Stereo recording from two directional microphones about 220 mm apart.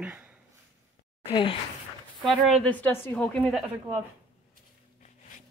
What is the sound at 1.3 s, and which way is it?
Speech, 20° left (ahead or behind).